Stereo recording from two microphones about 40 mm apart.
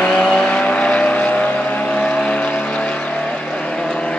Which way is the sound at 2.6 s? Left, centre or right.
Left.